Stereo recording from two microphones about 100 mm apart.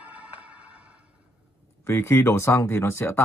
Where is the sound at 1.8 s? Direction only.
25° left (ahead or behind).